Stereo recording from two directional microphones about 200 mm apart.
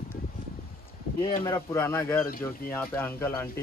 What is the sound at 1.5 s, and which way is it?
Speech, 15° left (ahead or behind).